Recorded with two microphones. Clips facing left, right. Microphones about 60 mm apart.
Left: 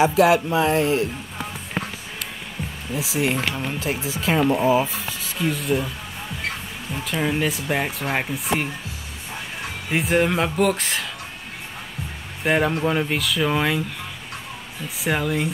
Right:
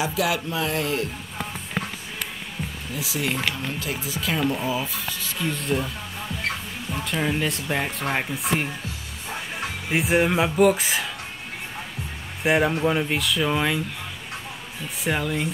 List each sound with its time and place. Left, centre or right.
0.0 s speech: left
2.9 s speech: left
5.0 s a sound: centre
5.5 s speech: centre
6.9 s speech: centre
9.8 s speech: centre
12.4 s speech: centre
15.0 s speech: centre